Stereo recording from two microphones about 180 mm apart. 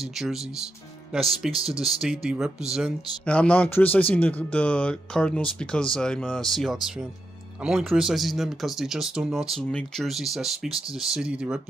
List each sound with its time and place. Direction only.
0.0 s speech: centre (ahead or behind)
3.3 s speech: 10° left (ahead or behind)